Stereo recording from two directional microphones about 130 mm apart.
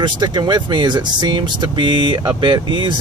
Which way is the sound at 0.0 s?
35° right (ahead or behind).